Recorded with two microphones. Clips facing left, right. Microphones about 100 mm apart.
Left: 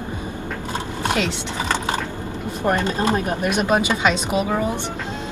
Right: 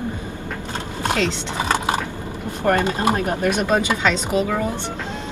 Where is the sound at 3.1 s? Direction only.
15° left (ahead or behind).